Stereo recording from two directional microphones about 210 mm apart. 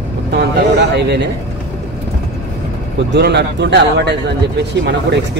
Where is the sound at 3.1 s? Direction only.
55° right (ahead or behind).